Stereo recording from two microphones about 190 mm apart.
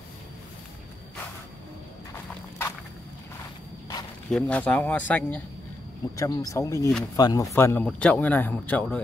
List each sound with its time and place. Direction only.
4.3 s a man's voice: 5° left (ahead or behind)